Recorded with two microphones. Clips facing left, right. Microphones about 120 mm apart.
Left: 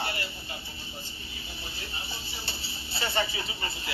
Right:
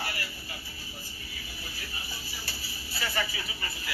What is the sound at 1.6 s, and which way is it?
Speech, 25° left (ahead or behind).